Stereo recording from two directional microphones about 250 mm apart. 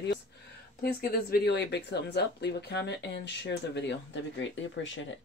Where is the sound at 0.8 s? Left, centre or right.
Left.